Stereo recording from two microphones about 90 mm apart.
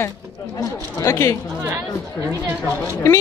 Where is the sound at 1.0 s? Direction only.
30° left (ahead or behind).